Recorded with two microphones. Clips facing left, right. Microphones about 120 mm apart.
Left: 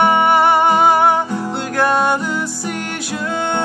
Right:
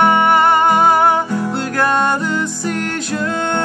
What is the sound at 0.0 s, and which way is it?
Music, 5° left (ahead or behind).